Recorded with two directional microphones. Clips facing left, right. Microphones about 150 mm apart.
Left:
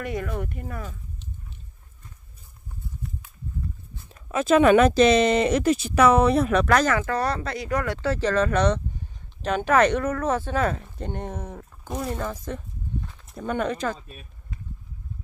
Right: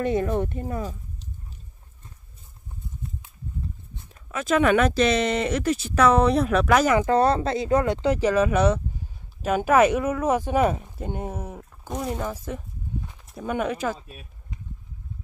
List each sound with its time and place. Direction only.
0.0 s speech: 25° right (ahead or behind)
4.3 s speech: 25° left (ahead or behind); by 7.1 s 10° right (ahead or behind)
7.1 s speech: 25° right (ahead or behind); by 11.9 s 10° right (ahead or behind)
12.0 s a sound: 10° right (ahead or behind)
13.3 s speech: 5° right (ahead or behind)